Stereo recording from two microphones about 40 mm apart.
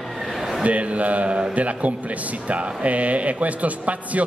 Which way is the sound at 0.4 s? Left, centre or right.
Centre.